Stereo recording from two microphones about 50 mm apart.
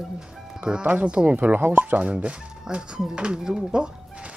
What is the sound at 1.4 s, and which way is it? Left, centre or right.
Speech, right.